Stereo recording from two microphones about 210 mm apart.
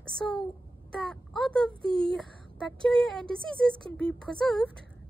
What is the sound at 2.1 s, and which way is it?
Speech, 5° left (ahead or behind).